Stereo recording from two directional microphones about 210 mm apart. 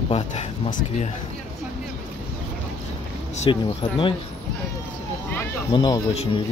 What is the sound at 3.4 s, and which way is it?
Speech, 25° left (ahead or behind).